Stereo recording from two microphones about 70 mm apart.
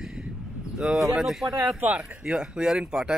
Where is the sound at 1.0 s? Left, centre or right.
Centre.